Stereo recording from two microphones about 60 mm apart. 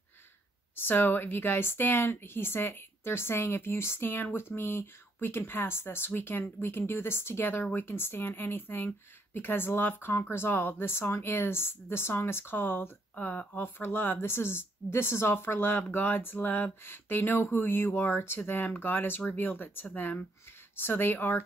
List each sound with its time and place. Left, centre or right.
0.7 s speech: left